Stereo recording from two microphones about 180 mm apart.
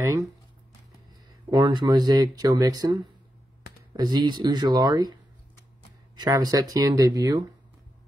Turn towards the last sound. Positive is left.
turn(degrees=-20)  # may be behind; listen again after turning